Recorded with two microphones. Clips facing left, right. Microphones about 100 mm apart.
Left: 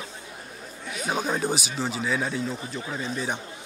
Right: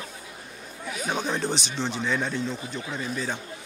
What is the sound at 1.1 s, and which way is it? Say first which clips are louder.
Speech: left 2 dB; 10° left (ahead or behind).